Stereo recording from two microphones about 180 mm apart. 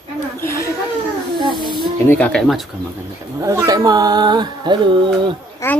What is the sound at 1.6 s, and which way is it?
Music, 25° right (ahead or behind).